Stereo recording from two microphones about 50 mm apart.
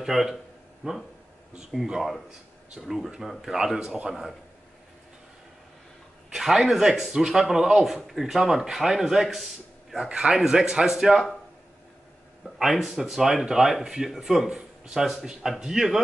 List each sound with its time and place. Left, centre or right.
0.0 s speech: centre
0.8 s speech: centre
1.6 s speech: centre
6.3 s speech: centre
10.0 s speech: centre
12.4 s speech: centre